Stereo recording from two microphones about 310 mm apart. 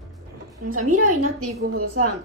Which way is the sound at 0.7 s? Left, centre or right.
Right.